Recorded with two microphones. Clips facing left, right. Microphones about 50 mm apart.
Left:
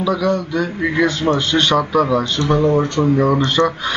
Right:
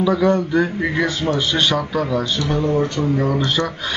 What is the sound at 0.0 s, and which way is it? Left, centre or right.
Speech, right.